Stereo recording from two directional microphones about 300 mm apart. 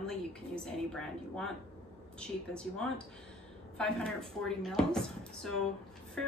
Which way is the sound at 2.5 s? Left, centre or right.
Centre.